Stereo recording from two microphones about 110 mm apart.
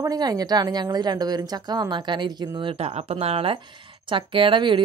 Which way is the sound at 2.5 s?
55° right (ahead or behind).